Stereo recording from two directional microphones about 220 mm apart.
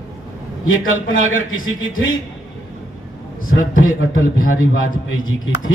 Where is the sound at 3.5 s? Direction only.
65° left (ahead or behind).